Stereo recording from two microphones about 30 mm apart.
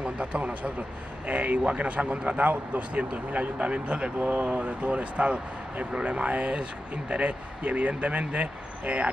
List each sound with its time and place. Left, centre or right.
0.0 s a man's voice: right
1.7 s speech: right
2.2 s a man's voice: right
3.3 s speech: right
4.5 s speech: right